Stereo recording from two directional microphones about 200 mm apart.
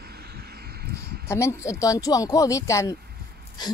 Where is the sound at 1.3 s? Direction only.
15° left (ahead or behind).